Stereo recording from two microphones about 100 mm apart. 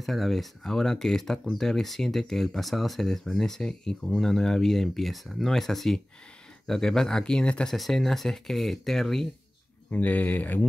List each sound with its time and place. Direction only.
0.0 s speech: centre (ahead or behind)
9.8 s speech: 15° left (ahead or behind)